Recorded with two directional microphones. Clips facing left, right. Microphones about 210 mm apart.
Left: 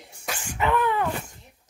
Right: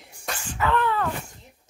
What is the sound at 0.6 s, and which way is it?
Wail, 15° left (ahead or behind).